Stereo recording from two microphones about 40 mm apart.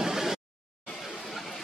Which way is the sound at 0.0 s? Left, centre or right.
Centre.